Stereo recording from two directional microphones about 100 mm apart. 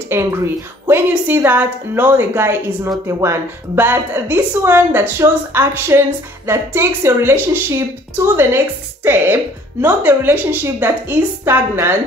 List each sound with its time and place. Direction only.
0.1 s a woman's voice: 25° right (ahead or behind)